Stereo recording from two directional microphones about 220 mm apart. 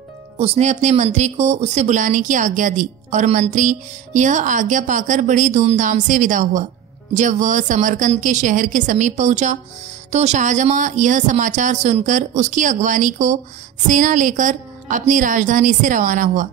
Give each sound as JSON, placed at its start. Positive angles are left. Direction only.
{"t": 0.4, "sound": "speech", "side_deg": -30}